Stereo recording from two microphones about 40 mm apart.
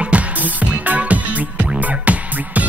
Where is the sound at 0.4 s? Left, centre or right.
Right.